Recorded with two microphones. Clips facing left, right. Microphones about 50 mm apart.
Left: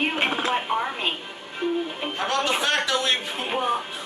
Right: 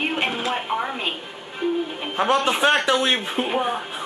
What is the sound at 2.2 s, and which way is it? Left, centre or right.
Speech, centre.